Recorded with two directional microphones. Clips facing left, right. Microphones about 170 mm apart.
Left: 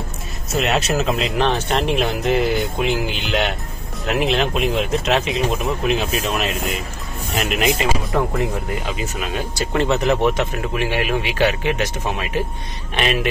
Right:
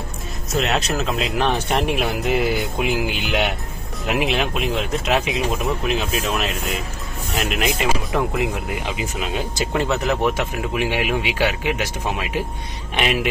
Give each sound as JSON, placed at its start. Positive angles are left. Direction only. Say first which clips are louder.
{"t": 0.6, "sound": "speech", "louder": "left 2 dB", "side_deg": 5}
{"t": 1.5, "sound": "speech", "louder": "left 1 dB", "side_deg": -15}
{"t": 4.6, "sound": "speech", "louder": "left 3 dB", "side_deg": 0}
{"t": 8.4, "sound": "speech", "louder": "left 1 dB", "side_deg": -15}
{"t": 9.8, "sound": "speech", "louder": "left 5 dB", "side_deg": 0}
{"t": 10.7, "sound": "speech", "louder": "left 1 dB", "side_deg": -15}